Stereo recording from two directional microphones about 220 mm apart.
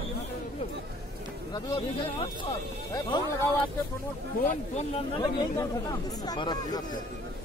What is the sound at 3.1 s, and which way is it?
Speech, 20° left (ahead or behind).